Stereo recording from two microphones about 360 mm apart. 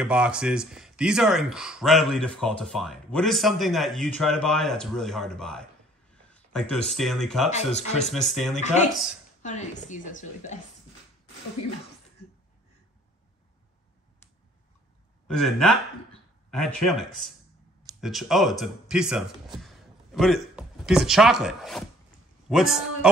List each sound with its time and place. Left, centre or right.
0.0 s speech: centre
7.5 s a woman's voice: centre
8.0 s speech: centre
8.5 s a woman's voice: centre
15.2 s speech: centre